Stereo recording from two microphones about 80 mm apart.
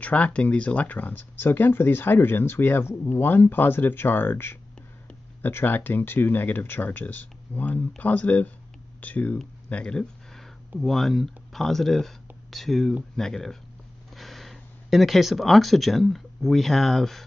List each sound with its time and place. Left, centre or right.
0.0 s speech: centre
9.7 s a sound: centre
10.8 s speech: centre